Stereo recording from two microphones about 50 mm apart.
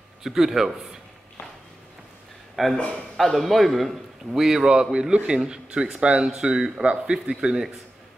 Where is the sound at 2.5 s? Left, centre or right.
Centre.